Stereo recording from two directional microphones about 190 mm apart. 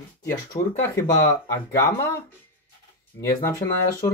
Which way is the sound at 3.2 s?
15° left (ahead or behind).